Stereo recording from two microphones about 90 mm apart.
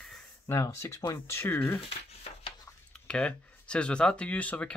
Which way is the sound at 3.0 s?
10° left (ahead or behind).